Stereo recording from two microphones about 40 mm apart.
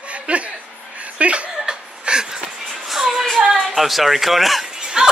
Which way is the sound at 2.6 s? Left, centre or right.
Centre.